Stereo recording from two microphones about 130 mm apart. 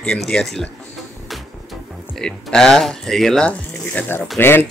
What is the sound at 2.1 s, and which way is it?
A man's voice, 5° left (ahead or behind).